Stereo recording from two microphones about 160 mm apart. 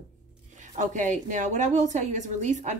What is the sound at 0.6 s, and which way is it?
A woman's voice, 50° right (ahead or behind).